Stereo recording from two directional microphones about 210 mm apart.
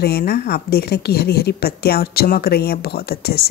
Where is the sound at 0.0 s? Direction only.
50° left (ahead or behind).